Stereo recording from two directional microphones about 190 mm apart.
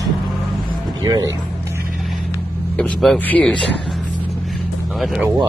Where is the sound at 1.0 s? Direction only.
20° right (ahead or behind).